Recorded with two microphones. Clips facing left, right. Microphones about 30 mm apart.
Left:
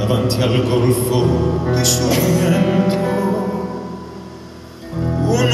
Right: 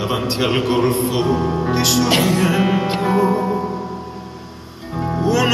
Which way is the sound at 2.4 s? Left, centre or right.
Centre.